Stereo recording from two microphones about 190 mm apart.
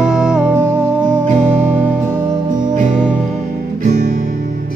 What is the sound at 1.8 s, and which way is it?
Music, 15° right (ahead or behind).